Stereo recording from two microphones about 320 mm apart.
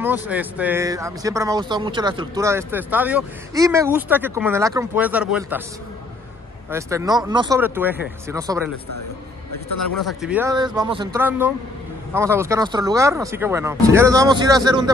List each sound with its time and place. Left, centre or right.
0.0 s speech: centre
6.7 s speech: centre
9.5 s a man's voice: left
9.9 s speech: centre